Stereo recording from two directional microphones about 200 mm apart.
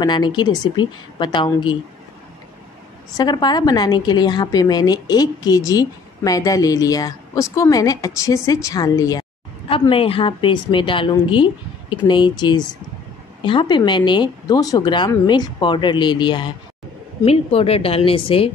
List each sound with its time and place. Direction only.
0.0 s a woman's voice: 20° left (ahead or behind)
3.2 s a woman's voice: 20° left (ahead or behind)